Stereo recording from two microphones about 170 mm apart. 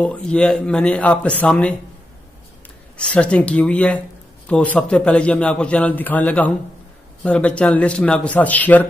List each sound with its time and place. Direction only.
0.0 s a man's voice: 5° left (ahead or behind)
3.0 s a man's voice: 5° left (ahead or behind)